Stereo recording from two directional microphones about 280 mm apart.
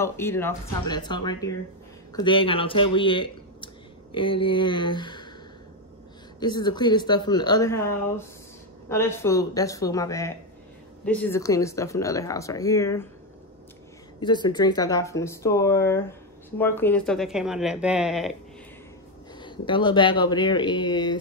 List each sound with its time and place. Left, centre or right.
0.0 s speech: centre
6.4 s speech: centre
14.2 s speech: centre
19.4 s speech: centre